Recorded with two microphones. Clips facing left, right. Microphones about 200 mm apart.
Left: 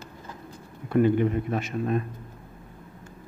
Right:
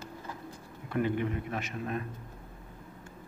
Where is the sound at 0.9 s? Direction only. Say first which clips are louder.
Left 9 dB; 35° left (ahead or behind).